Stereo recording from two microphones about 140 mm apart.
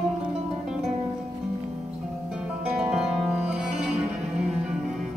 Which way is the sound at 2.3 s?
5° right (ahead or behind).